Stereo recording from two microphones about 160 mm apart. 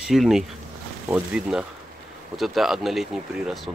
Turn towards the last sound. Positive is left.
turn(degrees=0)  # may be behind; listen again after turning